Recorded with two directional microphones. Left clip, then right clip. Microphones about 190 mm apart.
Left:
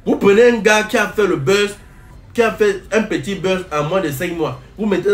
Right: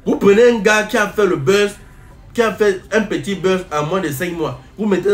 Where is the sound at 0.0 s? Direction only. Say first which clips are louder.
Even; 5° right (ahead or behind).